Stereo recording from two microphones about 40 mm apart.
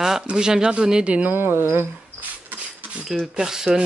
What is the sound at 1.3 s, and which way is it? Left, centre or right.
Speech, right.